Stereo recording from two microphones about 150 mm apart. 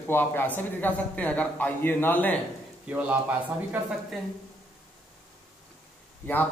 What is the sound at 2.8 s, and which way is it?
Speech, 10° right (ahead or behind).